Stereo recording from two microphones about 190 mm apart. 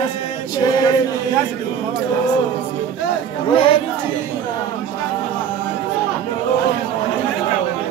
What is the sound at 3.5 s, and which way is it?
Speech, 30° left (ahead or behind).